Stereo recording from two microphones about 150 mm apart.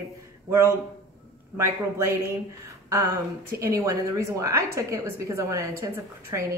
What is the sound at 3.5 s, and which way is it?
A woman's voice, 20° right (ahead or behind).